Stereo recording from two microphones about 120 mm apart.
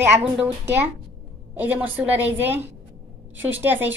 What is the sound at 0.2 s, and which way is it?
A woman's voice, 15° right (ahead or behind).